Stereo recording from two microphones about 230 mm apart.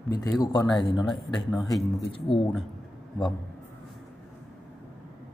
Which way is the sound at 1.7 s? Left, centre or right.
Left.